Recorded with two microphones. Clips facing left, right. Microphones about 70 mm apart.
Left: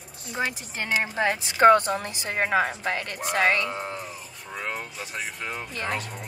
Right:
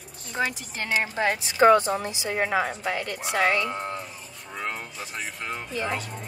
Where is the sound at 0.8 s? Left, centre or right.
Left.